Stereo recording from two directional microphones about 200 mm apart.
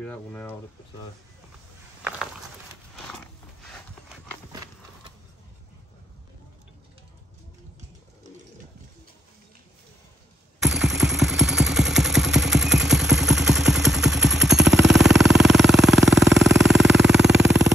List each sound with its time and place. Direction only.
0.0 s speech: 5° left (ahead or behind)
10.6 s a sound: centre (ahead or behind)
16.9 s vehicle: centre (ahead or behind)
17.3 s vehicle: 60° right (ahead or behind)